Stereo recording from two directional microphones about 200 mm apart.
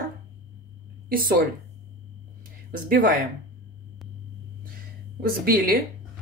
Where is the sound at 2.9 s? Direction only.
45° right (ahead or behind).